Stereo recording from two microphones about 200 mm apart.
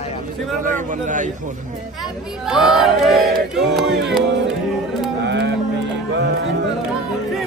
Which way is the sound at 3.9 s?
60° right (ahead or behind).